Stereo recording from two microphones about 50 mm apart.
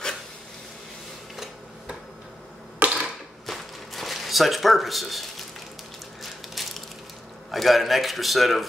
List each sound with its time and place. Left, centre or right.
2.8 s typewriter: right
3.4 s a sound: centre
6.2 s crushing: centre
7.5 s a man's voice: centre